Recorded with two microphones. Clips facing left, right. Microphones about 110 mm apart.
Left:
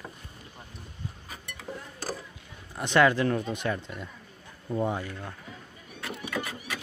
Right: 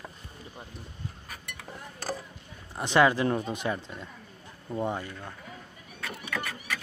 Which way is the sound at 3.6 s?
15° right (ahead or behind).